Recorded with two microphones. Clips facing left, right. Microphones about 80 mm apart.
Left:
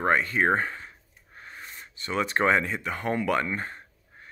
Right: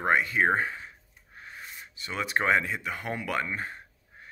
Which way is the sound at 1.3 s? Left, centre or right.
Centre.